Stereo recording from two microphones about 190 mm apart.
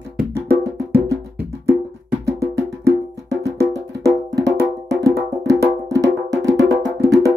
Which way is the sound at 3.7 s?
20° right (ahead or behind).